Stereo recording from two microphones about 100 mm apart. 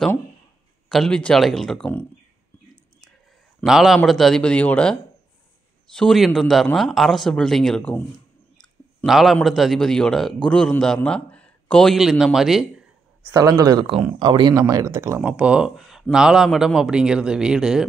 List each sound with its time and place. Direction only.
0.8 s speech: 5° left (ahead or behind)
3.6 s speech: 5° right (ahead or behind); by 4.9 s 10° left (ahead or behind)
5.9 s a man's voice: centre (ahead or behind)
13.4 s speech: 40° right (ahead or behind)
13.8 s speech: 55° right (ahead or behind)
14.5 s speech: 35° right (ahead or behind)
15.2 s speech: 10° right (ahead or behind)